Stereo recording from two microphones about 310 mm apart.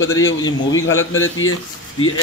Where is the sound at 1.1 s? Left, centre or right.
Left.